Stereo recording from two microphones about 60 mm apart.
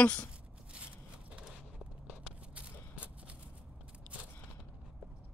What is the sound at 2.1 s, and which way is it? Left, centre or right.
Walk, right.